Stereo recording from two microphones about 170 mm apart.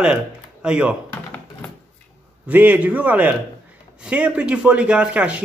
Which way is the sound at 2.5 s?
10° right (ahead or behind).